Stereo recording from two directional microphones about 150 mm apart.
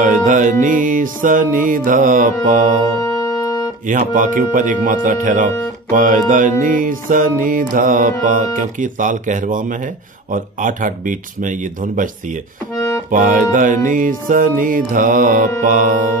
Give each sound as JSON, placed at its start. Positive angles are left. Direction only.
{"t": 0.0, "sound": "speech", "side_deg": -60}
{"t": 3.0, "sound": "music", "side_deg": 25}
{"t": 3.8, "sound": "speech", "side_deg": -60}
{"t": 12.7, "sound": "accordion", "side_deg": 20}
{"t": 13.1, "sound": "speech", "side_deg": -60}